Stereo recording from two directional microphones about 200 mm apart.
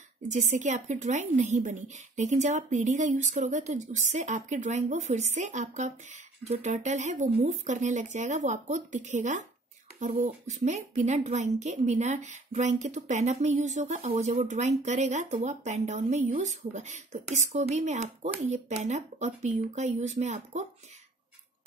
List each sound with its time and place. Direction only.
0.3 s speech: 35° right (ahead or behind)